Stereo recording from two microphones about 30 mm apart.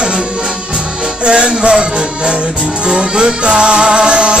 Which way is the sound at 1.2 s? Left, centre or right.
Right.